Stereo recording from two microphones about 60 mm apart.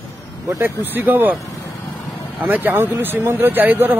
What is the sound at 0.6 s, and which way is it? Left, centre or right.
Speech, right.